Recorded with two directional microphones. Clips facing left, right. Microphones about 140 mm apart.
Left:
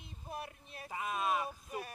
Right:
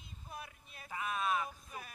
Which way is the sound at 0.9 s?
25° left (ahead or behind).